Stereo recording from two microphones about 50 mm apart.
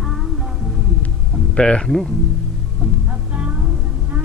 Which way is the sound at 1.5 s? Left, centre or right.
Centre.